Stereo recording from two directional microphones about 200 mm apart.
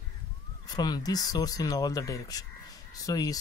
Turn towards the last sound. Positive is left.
turn(degrees=20)  # may be behind; listen again after turning